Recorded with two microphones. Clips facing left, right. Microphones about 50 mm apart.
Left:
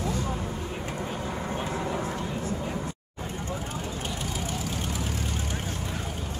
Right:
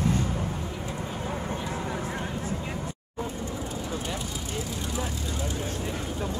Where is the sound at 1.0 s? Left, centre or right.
Centre.